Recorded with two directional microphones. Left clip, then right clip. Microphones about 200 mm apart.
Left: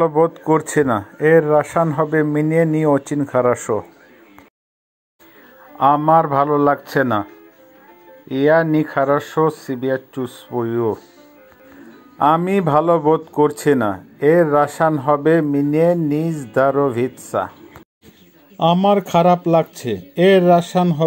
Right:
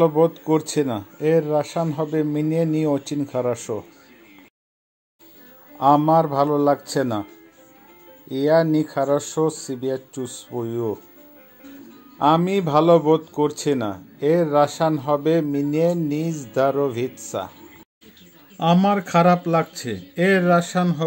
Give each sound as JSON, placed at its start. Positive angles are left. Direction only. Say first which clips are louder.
{"t": 0.0, "sound": "speech", "louder": "left 2 dB", "side_deg": 10}
{"t": 3.2, "sound": "speech", "louder": "left 7 dB", "side_deg": 20}
{"t": 5.8, "sound": "speech", "louder": "left 3 dB", "side_deg": 10}
{"t": 8.3, "sound": "speech", "louder": "left 3 dB", "side_deg": 10}
{"t": 12.2, "sound": "speech", "louder": "left 3 dB", "side_deg": 15}
{"t": 18.6, "sound": "speech", "louder": "left 5 dB", "side_deg": 15}